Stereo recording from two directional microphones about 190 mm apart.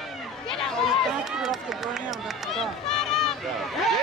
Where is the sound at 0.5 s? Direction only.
5° left (ahead or behind).